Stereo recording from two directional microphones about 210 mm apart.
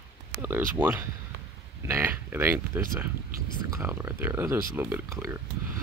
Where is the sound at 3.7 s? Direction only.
10° right (ahead or behind).